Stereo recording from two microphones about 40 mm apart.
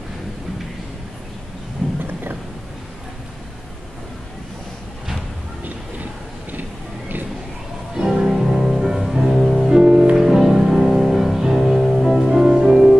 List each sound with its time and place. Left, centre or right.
1.8 s a sound: centre
7.9 s music: centre
9.7 s music: centre
10.1 s music: centre
12.3 s music: centre